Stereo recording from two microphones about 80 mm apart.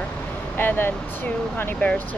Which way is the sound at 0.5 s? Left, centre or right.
Left.